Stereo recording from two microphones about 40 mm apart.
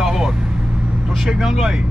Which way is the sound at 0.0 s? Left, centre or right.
Centre.